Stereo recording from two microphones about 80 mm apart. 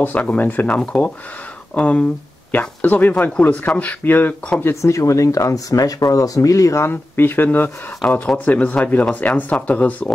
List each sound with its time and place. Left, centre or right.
0.0 s speech: centre
4.8 s speech: left
6.9 s speech: left
8.0 s speech: centre
8.5 s speech: centre